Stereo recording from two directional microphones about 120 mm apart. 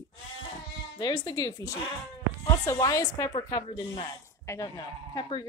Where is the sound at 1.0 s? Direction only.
35° left (ahead or behind).